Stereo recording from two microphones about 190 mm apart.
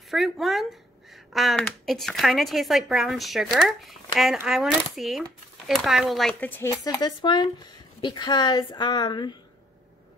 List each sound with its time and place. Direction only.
0.1 s a woman's voice: centre (ahead or behind); by 9.4 s 25° left (ahead or behind)